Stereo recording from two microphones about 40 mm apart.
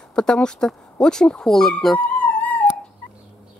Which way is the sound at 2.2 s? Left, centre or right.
Left.